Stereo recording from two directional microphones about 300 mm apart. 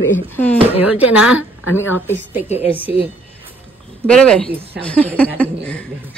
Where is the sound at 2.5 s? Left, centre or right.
Centre.